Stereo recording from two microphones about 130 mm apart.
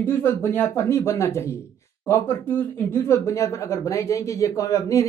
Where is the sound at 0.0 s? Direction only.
15° left (ahead or behind).